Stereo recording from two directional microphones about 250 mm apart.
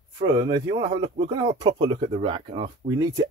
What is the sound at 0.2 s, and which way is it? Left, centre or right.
Speech, centre.